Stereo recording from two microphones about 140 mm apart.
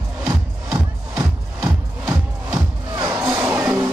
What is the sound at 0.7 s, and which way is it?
Music, 15° right (ahead or behind).